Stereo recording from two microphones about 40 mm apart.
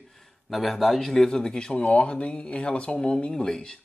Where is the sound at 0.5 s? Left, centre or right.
Centre.